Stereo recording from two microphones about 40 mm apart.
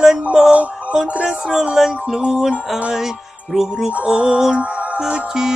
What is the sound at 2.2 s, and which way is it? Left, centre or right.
Music, right.